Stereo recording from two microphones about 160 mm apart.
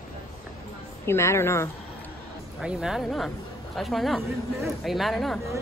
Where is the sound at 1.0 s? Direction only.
15° left (ahead or behind).